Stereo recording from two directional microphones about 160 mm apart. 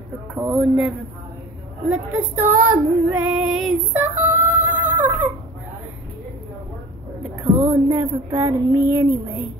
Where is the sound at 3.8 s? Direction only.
10° right (ahead or behind).